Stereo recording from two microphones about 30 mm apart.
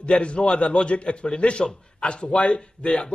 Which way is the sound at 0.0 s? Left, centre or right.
Left.